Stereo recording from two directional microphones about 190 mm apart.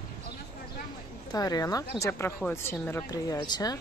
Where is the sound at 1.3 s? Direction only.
20° left (ahead or behind).